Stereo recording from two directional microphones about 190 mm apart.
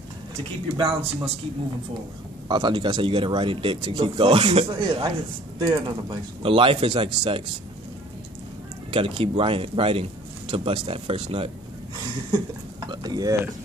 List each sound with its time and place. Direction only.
0.7 s speech: 30° right (ahead or behind)
2.4 s speech: 25° right (ahead or behind)
8.9 s speech: 30° right (ahead or behind)
12.8 s speech: 20° right (ahead or behind)